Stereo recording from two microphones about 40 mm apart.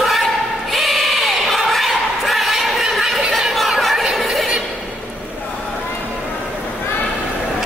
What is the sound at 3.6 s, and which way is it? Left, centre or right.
Chatter, centre.